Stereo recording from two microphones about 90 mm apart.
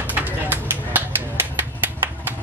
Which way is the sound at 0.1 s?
20° right (ahead or behind).